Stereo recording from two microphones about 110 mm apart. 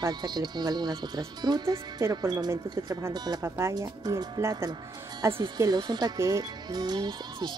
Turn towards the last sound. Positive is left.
turn(degrees=-40)  # may be behind; listen again after turning